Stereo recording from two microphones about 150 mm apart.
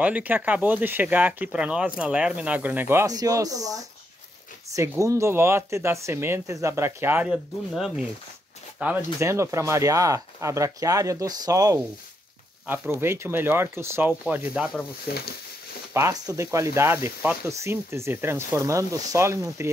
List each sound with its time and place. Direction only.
0.0 s speech: 10° right (ahead or behind)
7.7 s speech: centre (ahead or behind)
15.9 s speech: 20° right (ahead or behind)